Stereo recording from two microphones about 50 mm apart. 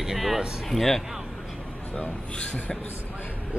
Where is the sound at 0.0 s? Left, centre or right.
Centre.